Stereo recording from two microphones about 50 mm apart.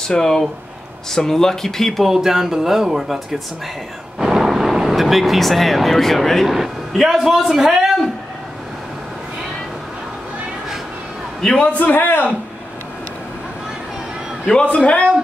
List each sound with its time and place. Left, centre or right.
0.2 s speech: centre
2.0 s speech: centre
11.4 s speech: centre
11.8 s a man's voice: left
14.5 s a man's voice: centre